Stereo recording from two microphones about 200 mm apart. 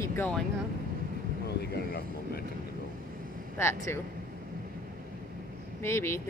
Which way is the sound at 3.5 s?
10° left (ahead or behind).